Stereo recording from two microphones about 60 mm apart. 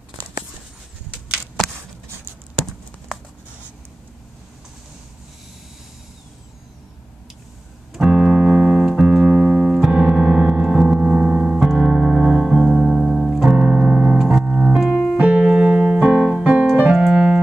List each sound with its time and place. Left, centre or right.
7.9 s music: centre
14.4 s keyboard: right
14.7 s music: centre
15.8 s keyboard: right